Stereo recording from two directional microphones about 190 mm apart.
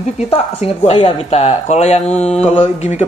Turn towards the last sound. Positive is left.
turn(degrees=35)  # may be behind; listen again after turning